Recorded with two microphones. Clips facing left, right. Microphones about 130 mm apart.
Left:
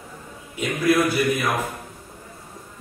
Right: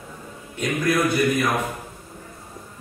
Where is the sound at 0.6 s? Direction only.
5° left (ahead or behind).